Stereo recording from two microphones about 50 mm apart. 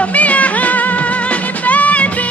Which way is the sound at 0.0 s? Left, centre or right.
Left.